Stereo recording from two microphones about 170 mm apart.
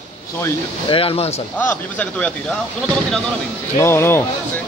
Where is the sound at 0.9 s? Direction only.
35° left (ahead or behind).